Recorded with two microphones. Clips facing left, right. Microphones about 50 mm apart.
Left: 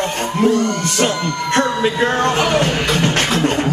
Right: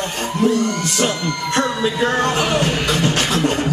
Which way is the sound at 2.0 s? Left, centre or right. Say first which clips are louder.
Left 1 dB; left.